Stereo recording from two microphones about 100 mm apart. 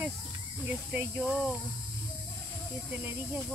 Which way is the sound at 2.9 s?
15° right (ahead or behind).